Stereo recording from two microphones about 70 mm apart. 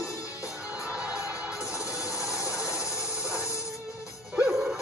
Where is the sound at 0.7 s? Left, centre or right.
Centre.